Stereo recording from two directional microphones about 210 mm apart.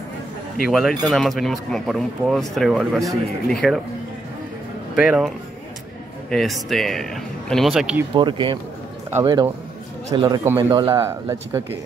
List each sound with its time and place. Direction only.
0.7 s speech: centre (ahead or behind)
4.9 s speech: 5° right (ahead or behind)
6.3 s speech: centre (ahead or behind)
8.1 s speech: 20° right (ahead or behind)